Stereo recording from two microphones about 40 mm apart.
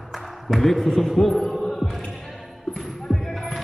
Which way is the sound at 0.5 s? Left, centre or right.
Centre.